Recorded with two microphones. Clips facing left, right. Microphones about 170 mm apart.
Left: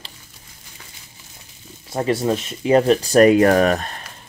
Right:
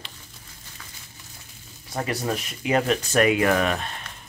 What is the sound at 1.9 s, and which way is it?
Speech, 25° left (ahead or behind).